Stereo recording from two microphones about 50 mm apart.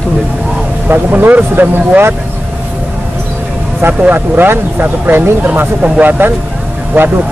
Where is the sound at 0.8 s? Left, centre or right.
Right.